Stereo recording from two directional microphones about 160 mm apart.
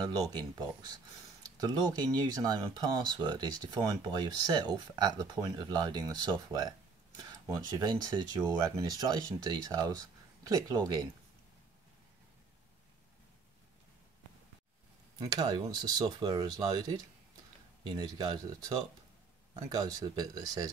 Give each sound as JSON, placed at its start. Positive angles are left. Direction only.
{"t": 0.0, "sound": "speech", "side_deg": -25}
{"t": 15.1, "sound": "speech", "side_deg": -25}